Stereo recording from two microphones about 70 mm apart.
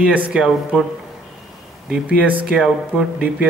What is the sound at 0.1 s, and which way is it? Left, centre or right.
Speech, right.